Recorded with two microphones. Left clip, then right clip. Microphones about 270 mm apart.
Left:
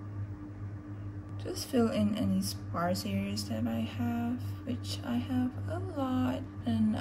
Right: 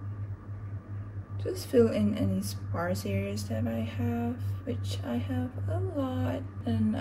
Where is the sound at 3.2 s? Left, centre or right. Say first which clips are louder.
Right 2 dB; right.